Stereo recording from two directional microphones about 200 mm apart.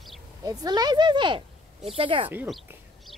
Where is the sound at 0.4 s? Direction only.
20° right (ahead or behind).